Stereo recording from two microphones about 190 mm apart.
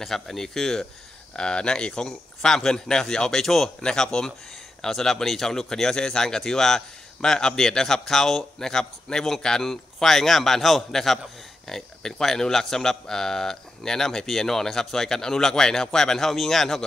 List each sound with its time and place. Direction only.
0.0 s speech: centre (ahead or behind)